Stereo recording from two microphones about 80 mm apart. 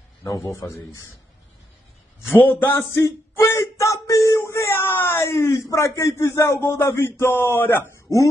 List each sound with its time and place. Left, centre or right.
0.2 s a man's voice: left
0.5 s speech: left
2.3 s speech: left